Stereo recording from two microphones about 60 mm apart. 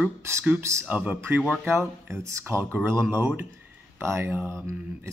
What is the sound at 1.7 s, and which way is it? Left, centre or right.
Speech, right.